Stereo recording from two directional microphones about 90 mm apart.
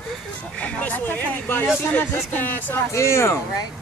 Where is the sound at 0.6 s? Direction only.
20° left (ahead or behind).